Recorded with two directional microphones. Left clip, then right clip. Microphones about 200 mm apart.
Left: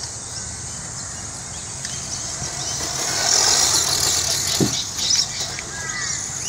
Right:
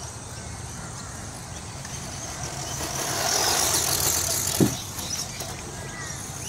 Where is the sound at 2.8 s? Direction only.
Centre (ahead or behind).